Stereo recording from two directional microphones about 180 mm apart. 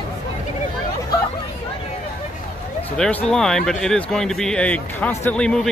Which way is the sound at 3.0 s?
5° left (ahead or behind).